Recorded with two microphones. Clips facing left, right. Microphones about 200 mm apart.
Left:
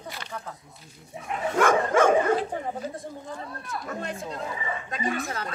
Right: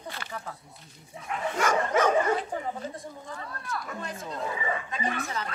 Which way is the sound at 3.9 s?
35° left (ahead or behind).